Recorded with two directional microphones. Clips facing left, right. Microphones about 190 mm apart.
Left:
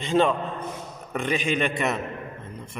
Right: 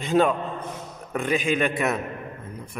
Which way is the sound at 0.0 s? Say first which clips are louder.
Right 1 dB; 5° right (ahead or behind).